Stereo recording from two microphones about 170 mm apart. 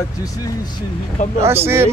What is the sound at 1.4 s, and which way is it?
Speech, 15° right (ahead or behind).